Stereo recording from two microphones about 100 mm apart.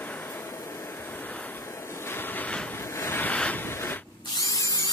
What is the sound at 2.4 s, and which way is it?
Vehicle, 10° left (ahead or behind).